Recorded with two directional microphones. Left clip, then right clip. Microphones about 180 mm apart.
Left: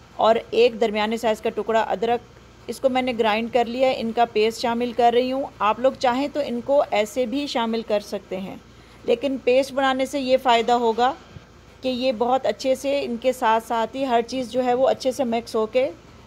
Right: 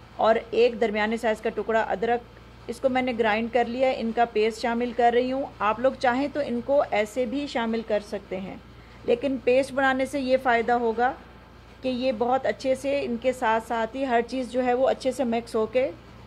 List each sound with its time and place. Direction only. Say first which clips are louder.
0.2 s a woman's voice: left 3 dB; 15° left (ahead or behind)
9.0 s a woman's voice: left 2 dB; 10° left (ahead or behind)